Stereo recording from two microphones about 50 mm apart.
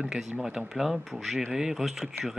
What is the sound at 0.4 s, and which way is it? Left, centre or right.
Speech, centre.